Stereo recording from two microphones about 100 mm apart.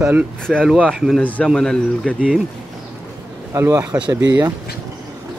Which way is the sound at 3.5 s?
25° right (ahead or behind).